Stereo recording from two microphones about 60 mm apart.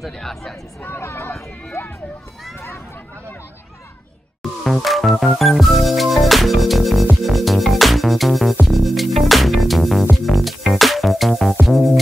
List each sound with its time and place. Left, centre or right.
0.0 s speech: centre
0.8 s speech: left
4.4 s music: centre